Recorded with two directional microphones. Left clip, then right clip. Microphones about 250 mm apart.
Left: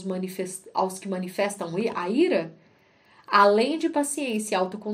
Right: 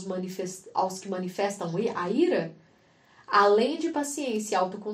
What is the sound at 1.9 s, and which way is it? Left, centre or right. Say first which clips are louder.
A woman's voice: left 3 dB; left.